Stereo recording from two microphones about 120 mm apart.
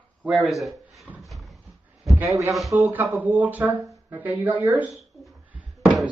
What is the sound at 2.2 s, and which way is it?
Speech, 25° right (ahead or behind).